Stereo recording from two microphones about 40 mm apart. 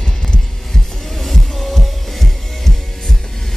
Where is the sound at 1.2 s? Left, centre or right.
Centre.